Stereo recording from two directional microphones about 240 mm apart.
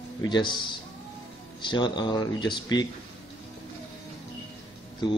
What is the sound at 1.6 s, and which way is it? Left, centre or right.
Speech, centre.